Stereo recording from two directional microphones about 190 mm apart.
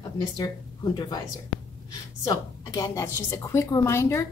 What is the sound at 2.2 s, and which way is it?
A woman's voice, 20° left (ahead or behind).